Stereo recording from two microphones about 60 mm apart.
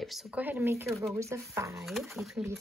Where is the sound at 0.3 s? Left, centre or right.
Right.